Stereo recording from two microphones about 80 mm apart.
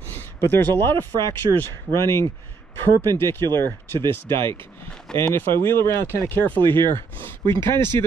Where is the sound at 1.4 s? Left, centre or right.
Right.